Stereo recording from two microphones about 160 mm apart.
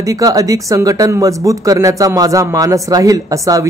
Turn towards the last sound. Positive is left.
turn(degrees=-20)  # may be behind; listen again after turning